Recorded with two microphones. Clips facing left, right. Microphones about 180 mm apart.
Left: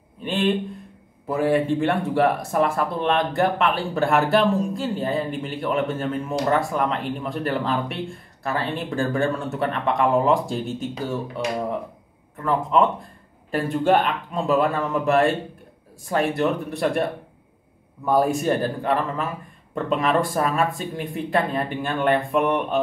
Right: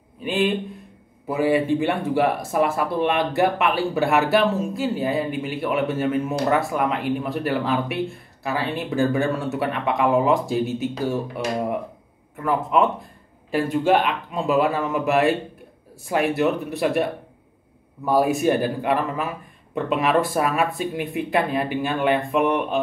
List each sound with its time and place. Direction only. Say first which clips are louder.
0.2 s speech: even; 5° right (ahead or behind)
13.5 s speech: right 1 dB; 5° right (ahead or behind)
18.0 s speech: right 1 dB; 5° right (ahead or behind)